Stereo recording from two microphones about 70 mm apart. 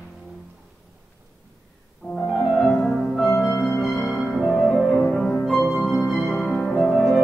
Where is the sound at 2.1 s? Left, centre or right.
Centre.